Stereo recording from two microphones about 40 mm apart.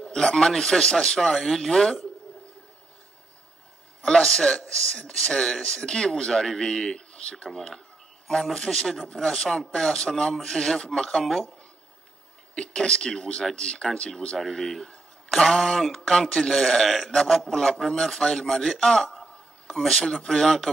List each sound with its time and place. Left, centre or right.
0.0 s a man's voice: centre
4.0 s a man's voice: centre
5.4 s a man's voice: centre
7.5 s a man's voice: centre
12.5 s a man's voice: left
13.6 s a man's voice: left
14.4 s a man's voice: centre